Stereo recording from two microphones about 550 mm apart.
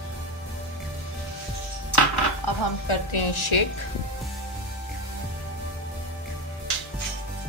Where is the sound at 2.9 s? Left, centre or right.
Left.